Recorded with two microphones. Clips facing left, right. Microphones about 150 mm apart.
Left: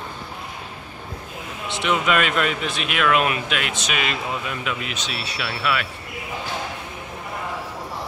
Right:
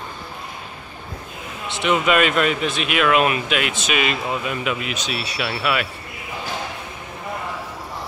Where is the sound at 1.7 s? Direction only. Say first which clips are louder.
Right 3 dB; centre (ahead or behind).